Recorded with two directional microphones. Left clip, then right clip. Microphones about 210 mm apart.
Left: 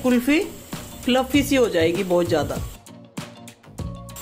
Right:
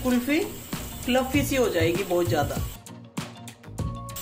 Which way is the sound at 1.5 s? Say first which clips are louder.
Left 5 dB; 35° left (ahead or behind).